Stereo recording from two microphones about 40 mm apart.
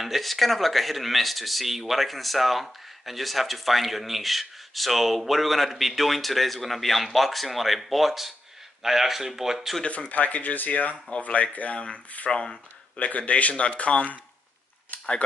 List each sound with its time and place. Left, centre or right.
0.0 s speech: centre
9.8 s speech: left